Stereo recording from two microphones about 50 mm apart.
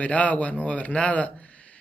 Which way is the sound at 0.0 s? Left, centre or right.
Left.